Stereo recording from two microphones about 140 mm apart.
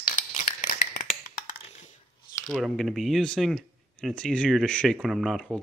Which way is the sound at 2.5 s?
Centre (ahead or behind).